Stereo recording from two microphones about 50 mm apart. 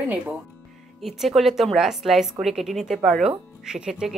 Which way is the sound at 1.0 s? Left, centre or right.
Centre.